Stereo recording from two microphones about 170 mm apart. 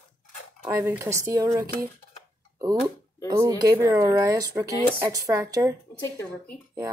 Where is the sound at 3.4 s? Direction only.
20° right (ahead or behind).